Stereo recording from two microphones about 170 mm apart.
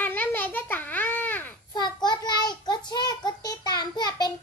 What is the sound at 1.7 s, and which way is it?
Child singing, 25° left (ahead or behind).